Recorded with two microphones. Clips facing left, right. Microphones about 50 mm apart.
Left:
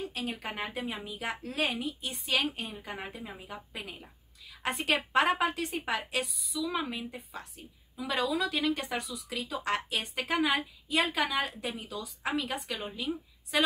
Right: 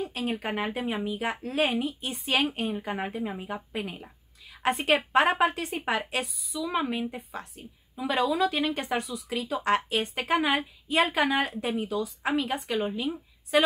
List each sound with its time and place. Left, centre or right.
0.1 s a woman's voice: centre